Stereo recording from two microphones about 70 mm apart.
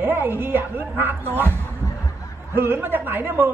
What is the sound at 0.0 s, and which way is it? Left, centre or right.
A woman's voice, right.